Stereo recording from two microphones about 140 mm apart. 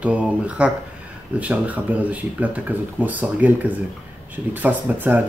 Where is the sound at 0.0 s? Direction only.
10° right (ahead or behind).